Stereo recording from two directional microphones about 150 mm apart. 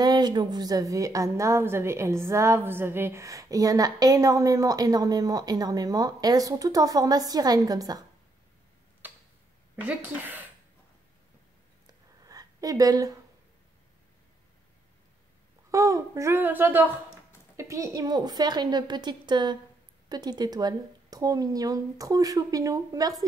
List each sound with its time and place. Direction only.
0.0 s a woman's voice: 30° right (ahead or behind)
9.0 s tick-tock: 10° right (ahead or behind)
9.8 s speech: 10° right (ahead or behind)
12.2 s a sound: 25° right (ahead or behind)
15.7 s a woman's voice: 20° right (ahead or behind)